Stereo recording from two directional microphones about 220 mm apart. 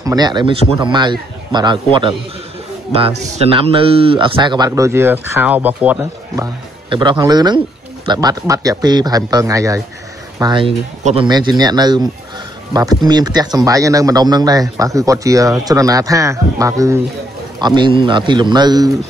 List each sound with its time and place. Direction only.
0.0 s a man's voice: 15° right (ahead or behind)